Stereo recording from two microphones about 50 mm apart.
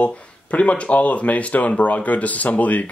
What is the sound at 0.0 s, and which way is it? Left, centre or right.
Speech, left.